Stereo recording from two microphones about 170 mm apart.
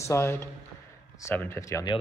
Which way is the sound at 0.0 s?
15° left (ahead or behind).